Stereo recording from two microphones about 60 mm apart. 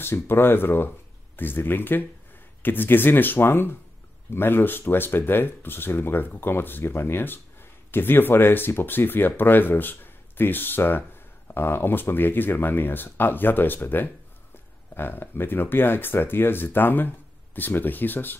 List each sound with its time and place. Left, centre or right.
0.0 s speech: left